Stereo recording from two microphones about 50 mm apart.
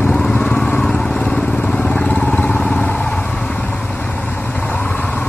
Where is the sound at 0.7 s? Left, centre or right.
Centre.